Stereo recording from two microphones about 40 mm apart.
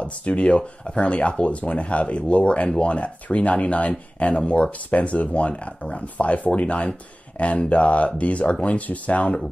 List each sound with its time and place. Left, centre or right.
0.0 s speech: left